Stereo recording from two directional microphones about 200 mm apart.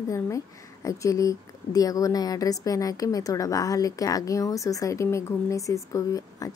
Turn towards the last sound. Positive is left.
turn(degrees=15)  # may be behind; listen again after turning